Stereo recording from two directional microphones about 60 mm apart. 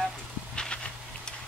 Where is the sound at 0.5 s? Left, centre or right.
Centre.